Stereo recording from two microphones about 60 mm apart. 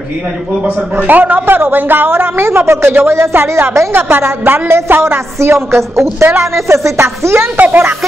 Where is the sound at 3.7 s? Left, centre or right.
Right.